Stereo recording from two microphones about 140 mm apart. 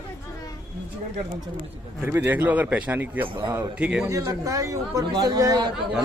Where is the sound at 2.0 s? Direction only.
15° right (ahead or behind).